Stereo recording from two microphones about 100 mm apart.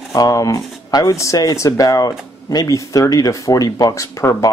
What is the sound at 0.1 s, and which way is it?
Speech, 35° left (ahead or behind).